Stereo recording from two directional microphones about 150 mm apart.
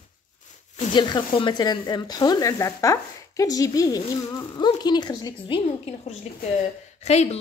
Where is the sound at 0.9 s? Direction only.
30° left (ahead or behind).